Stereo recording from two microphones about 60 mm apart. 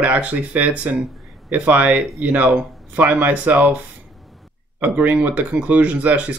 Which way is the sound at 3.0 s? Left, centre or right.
Right.